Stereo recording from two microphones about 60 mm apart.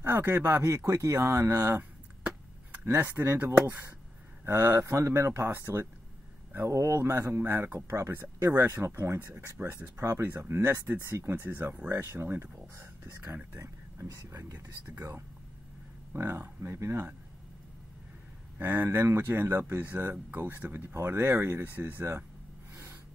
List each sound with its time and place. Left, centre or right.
0.0 s speech: right
0.7 s speech: right
1.5 s a sound: right
3.0 s speech: right
4.8 s speech: right
5.1 s speech: right
5.5 s speech: right
6.5 s speech: right
7.7 s speech: right
11.4 s speech: right
11.9 s speech: right
14.0 s speech: right
16.1 s speech: right
18.6 s speech: right